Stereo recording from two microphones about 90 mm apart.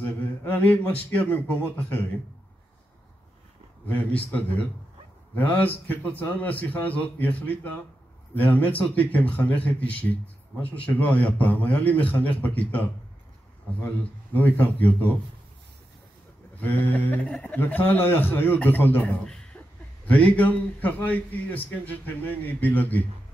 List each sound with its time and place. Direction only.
0.0 s a man's voice: 20° left (ahead or behind)
3.8 s a man's voice: 20° left (ahead or behind)
13.8 s a man's voice: 20° left (ahead or behind)
16.5 s a man's voice: 20° left (ahead or behind)
19.2 s a sound: 10° left (ahead or behind)
20.1 s a man's voice: 15° left (ahead or behind)